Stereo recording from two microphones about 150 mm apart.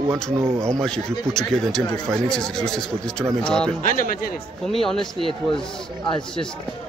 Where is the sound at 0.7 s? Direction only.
5° left (ahead or behind).